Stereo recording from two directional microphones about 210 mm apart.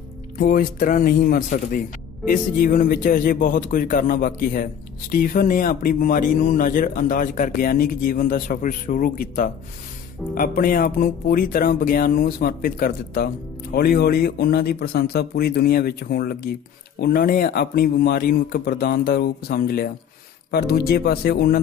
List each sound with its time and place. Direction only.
0.4 s speech: 45° left (ahead or behind)